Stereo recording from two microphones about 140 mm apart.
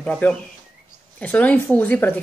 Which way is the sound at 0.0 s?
5° left (ahead or behind).